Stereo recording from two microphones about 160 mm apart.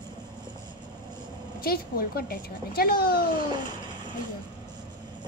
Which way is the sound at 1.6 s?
75° left (ahead or behind).